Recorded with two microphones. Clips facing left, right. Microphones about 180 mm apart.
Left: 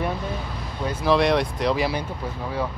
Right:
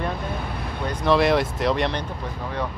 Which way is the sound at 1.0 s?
Centre (ahead or behind).